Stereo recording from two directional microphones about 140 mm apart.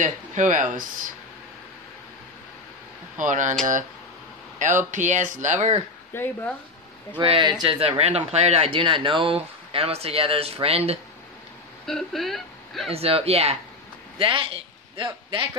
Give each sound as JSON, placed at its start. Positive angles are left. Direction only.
{"t": 0.0, "sound": "speech", "side_deg": -65}
{"t": 3.2, "sound": "speech", "side_deg": -65}
{"t": 4.6, "sound": "speech", "side_deg": -65}
{"t": 6.1, "sound": "speech", "side_deg": 15}
{"t": 7.2, "sound": "speech", "side_deg": -35}
{"t": 11.8, "sound": "speech", "side_deg": 0}
{"t": 12.9, "sound": "a man's voice", "side_deg": -45}